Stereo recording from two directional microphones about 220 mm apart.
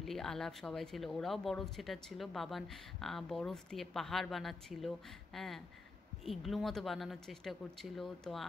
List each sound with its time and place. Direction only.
0.0 s speech: centre (ahead or behind)